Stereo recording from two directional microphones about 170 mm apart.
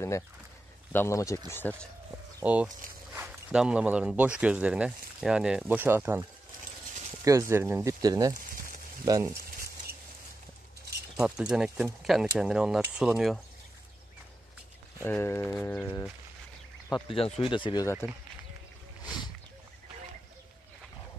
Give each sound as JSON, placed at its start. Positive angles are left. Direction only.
{"t": 0.9, "sound": "speech", "side_deg": 15}
{"t": 2.4, "sound": "speech", "side_deg": -10}
{"t": 7.2, "sound": "speech", "side_deg": -20}
{"t": 11.1, "sound": "speech", "side_deg": -5}
{"t": 15.0, "sound": "speech", "side_deg": 15}
{"t": 16.9, "sound": "speech", "side_deg": 30}